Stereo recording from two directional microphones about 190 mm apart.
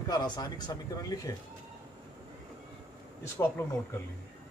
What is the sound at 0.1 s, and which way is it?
Speech, 20° left (ahead or behind).